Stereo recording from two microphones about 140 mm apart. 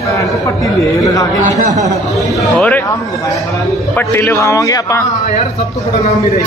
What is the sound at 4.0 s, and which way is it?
A man's voice, 15° left (ahead or behind).